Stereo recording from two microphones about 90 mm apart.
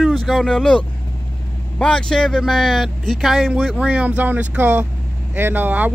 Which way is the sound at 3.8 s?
15° right (ahead or behind).